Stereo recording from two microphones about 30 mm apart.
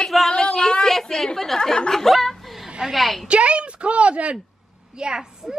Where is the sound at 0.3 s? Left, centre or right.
Left.